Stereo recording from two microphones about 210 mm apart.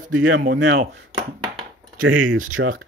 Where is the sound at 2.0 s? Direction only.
70° right (ahead or behind).